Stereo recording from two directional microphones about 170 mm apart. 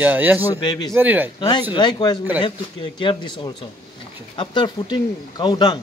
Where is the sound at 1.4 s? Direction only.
25° left (ahead or behind).